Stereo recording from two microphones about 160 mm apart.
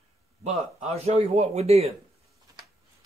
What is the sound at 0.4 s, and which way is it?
A man's voice, 45° right (ahead or behind).